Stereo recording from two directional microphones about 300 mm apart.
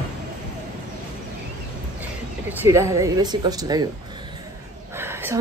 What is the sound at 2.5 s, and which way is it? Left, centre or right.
A woman's voice, centre.